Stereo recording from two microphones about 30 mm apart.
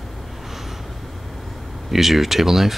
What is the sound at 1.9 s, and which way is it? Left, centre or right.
Speech, centre.